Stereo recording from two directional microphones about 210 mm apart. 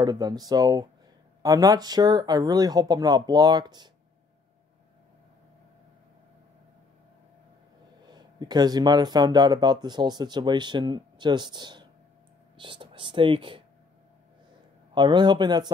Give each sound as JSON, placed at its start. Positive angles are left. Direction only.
{"t": 0.0, "sound": "speech", "side_deg": -20}
{"t": 8.1, "sound": "speech", "side_deg": -20}
{"t": 15.0, "sound": "speech", "side_deg": -20}